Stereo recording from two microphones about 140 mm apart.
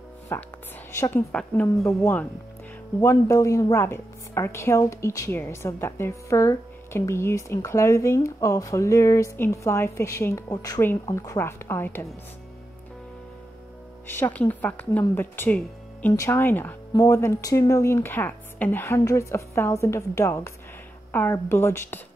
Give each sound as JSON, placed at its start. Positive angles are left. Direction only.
{"t": 0.3, "sound": "a woman's voice", "side_deg": 15}
{"t": 1.3, "sound": "a woman's voice", "side_deg": 5}
{"t": 14.0, "sound": "a woman's voice", "side_deg": 15}